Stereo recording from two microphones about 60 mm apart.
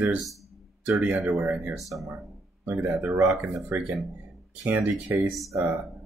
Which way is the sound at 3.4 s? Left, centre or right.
Right.